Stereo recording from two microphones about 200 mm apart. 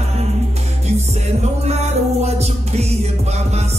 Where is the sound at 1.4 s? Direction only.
35° right (ahead or behind).